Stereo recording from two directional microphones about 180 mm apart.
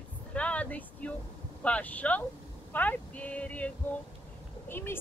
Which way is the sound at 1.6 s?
5° left (ahead or behind).